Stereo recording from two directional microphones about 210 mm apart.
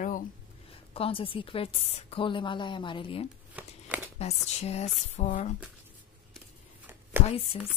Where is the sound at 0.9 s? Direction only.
25° left (ahead or behind).